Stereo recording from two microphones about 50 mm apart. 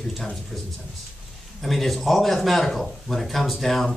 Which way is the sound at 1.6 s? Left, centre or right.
Centre.